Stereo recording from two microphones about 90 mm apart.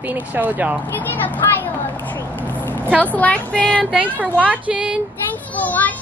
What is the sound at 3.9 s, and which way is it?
Speech, 15° right (ahead or behind).